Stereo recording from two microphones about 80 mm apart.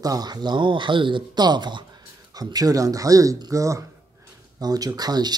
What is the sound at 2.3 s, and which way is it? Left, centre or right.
Speech, right.